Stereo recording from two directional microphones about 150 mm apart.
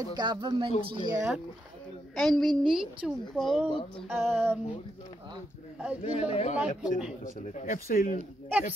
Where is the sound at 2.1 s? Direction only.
Centre (ahead or behind).